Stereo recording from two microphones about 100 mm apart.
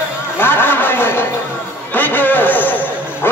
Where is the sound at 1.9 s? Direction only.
20° left (ahead or behind).